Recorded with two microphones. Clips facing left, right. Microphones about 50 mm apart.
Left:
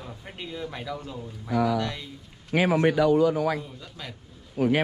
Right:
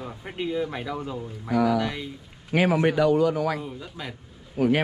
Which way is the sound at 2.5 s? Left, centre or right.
Right.